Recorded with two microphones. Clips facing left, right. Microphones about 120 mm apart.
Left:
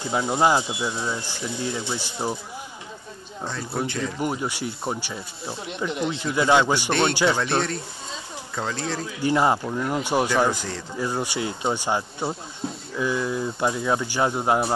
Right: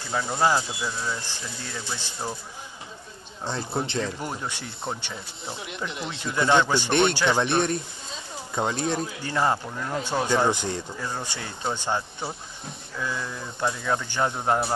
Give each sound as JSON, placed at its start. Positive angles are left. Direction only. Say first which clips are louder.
{"t": 0.1, "sound": "speech", "louder": "left 3 dB", "side_deg": 15}
{"t": 3.4, "sound": "speech", "louder": "even", "side_deg": -25}
{"t": 4.2, "sound": "speech", "louder": "left 6 dB", "side_deg": 5}
{"t": 6.9, "sound": "speech", "louder": "left 1 dB", "side_deg": -20}
{"t": 9.2, "sound": "speech", "louder": "left 7 dB", "side_deg": 15}
{"t": 10.2, "sound": "speech", "louder": "left 1 dB", "side_deg": -20}
{"t": 11.0, "sound": "speech", "louder": "left 7 dB", "side_deg": 10}
{"t": 13.0, "sound": "speech", "louder": "left 7 dB", "side_deg": 15}